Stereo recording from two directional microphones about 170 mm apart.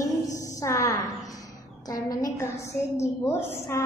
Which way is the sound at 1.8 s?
20° left (ahead or behind).